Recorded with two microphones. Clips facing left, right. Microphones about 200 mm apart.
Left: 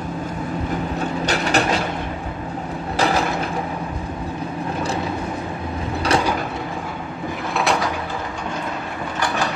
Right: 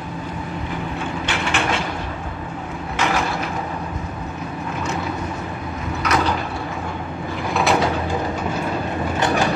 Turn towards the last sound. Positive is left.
turn(degrees=0)  # may be behind; listen again after turning